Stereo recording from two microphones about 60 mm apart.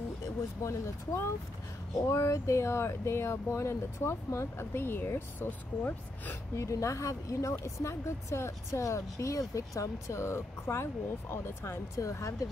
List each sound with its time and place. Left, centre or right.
0.2 s speech: left
5.5 s speech: left
6.5 s a woman's voice: left
7.5 s speech: left
12.0 s a woman's voice: left